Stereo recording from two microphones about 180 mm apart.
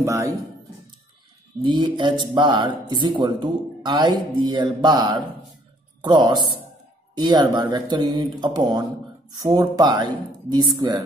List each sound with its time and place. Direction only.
0.0 s speech: 15° right (ahead or behind)
1.6 s speech: 25° right (ahead or behind)